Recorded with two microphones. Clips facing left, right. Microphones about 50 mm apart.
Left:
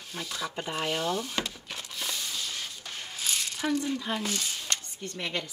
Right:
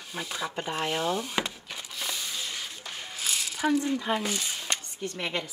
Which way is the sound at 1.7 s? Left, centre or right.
Centre.